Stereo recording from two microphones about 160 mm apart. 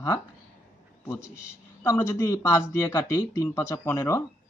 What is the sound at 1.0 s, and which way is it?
Speech, 20° left (ahead or behind).